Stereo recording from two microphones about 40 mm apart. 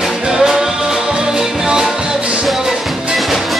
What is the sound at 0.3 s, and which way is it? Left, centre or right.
Music, centre.